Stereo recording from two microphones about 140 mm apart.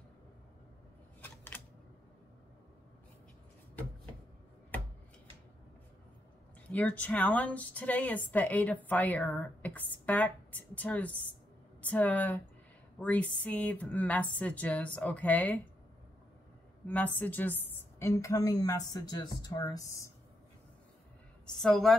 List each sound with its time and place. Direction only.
1.2 s a sound: 15° left (ahead or behind)
6.7 s a woman's voice: 10° left (ahead or behind)
16.8 s a woman's voice: 10° left (ahead or behind)
21.5 s a woman's voice: 5° left (ahead or behind)